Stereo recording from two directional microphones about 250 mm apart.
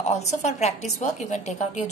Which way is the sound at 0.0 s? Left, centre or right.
Left.